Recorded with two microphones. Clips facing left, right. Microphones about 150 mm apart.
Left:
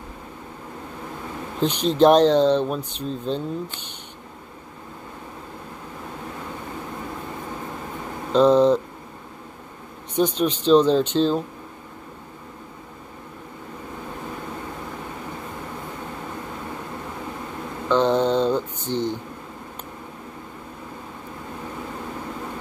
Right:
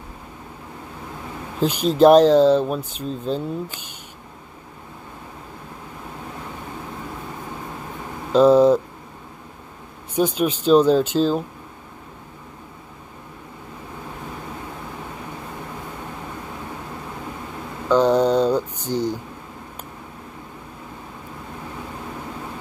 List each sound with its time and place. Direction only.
1.6 s speech: 5° right (ahead or behind)
8.3 s speech: 5° right (ahead or behind)
10.1 s speech: 10° right (ahead or behind)
17.8 s mantra: 5° right (ahead or behind)
18.9 s a sound: 40° right (ahead or behind)